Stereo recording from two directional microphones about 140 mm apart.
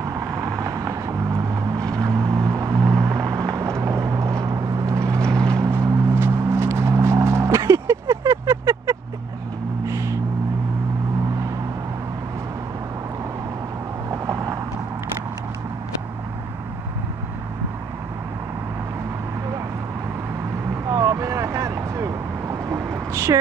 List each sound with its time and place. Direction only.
0.0 s vehicle: 25° right (ahead or behind)
5.2 s vehicle: 5° left (ahead or behind)
5.6 s music: 20° right (ahead or behind)
9.8 s a sound: 20° right (ahead or behind)
14.1 s vehicle: 25° right (ahead or behind)
20.9 s vehicle: 20° right (ahead or behind)